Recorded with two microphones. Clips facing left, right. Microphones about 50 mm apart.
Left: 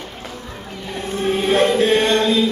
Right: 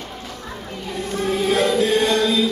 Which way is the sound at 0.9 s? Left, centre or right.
Left.